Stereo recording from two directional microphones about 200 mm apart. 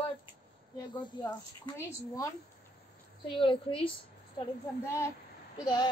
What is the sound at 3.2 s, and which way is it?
Speech, 25° left (ahead or behind).